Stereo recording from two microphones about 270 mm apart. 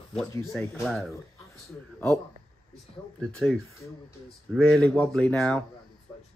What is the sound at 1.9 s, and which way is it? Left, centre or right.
Speech, centre.